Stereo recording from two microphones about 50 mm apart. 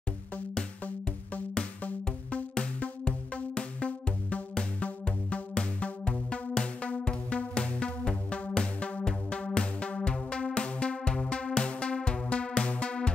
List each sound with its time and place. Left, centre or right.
2.3 s music: left